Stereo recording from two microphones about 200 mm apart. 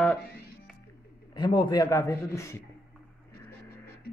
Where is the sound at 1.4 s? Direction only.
20° left (ahead or behind).